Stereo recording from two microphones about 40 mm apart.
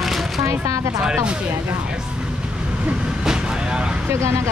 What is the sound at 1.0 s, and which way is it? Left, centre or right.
Speech, centre.